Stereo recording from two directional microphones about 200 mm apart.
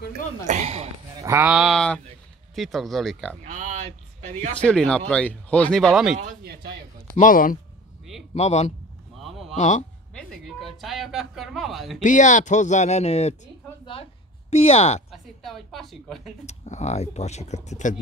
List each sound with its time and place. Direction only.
0.5 s speech: 35° right (ahead or behind)
1.2 s speech: 10° right (ahead or behind)
3.4 s speech: 35° right (ahead or behind)
4.6 s speech: 5° left (ahead or behind)
6.1 s a man's voice: 45° right (ahead or behind)
7.2 s speech: 45° left (ahead or behind)
10.1 s speech: centre (ahead or behind)
12.0 s speech: 40° left (ahead or behind)
14.5 s speech: 30° left (ahead or behind)
15.0 s a woman's voice: centre (ahead or behind)
16.4 s speech: 35° left (ahead or behind)